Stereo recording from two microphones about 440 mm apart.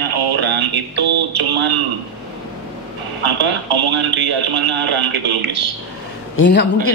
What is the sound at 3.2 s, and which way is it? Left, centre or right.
Speech, right.